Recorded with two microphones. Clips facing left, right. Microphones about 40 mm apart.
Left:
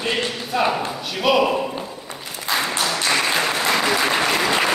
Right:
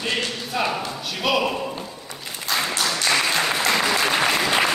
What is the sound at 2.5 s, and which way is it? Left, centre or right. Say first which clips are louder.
Applause: left 2 dB; centre.